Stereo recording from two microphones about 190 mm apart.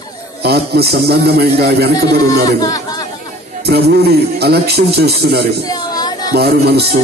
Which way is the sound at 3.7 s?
60° right (ahead or behind).